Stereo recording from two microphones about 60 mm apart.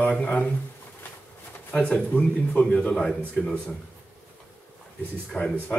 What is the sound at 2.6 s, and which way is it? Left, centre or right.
Speech, centre.